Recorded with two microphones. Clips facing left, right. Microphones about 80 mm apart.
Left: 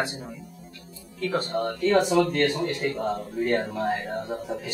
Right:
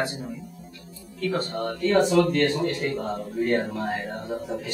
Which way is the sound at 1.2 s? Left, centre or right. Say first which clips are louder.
Left 1 dB; centre.